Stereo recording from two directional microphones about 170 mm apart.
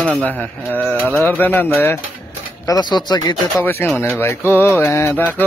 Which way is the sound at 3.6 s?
10° left (ahead or behind).